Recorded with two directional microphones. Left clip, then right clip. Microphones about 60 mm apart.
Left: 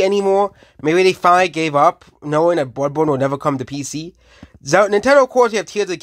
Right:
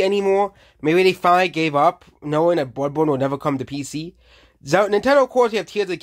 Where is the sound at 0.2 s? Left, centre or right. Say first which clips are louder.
Left 3 dB; centre.